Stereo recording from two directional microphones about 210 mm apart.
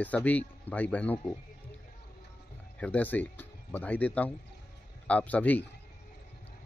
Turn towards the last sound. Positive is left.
turn(degrees=5)  # may be behind; listen again after turning